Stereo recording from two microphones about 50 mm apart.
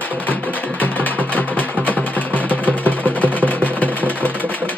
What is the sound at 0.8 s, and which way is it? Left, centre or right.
Music, left.